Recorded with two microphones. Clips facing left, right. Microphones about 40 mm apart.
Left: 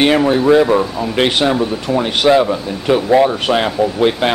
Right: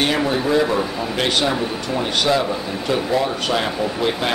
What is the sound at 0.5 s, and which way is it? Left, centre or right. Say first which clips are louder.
Speech: left 8 dB; centre.